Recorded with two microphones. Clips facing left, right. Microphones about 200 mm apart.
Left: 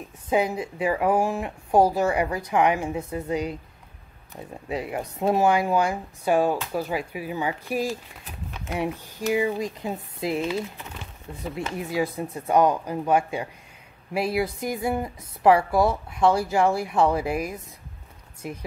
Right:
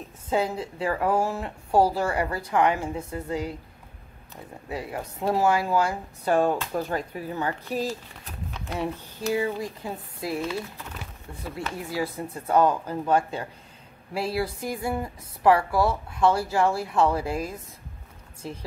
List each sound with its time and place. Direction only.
0.3 s speech: 15° left (ahead or behind)
4.6 s speech: 20° left (ahead or behind)
8.5 s a sound: 15° left (ahead or behind)
9.3 s a woman's voice: 15° left (ahead or behind)